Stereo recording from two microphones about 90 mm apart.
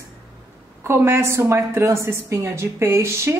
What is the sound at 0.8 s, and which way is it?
A woman's voice, 30° right (ahead or behind).